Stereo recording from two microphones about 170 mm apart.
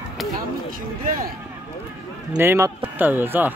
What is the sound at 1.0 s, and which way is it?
Speech, 55° right (ahead or behind).